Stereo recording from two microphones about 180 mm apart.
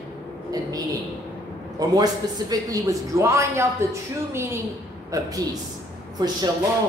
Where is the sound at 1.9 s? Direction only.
20° right (ahead or behind).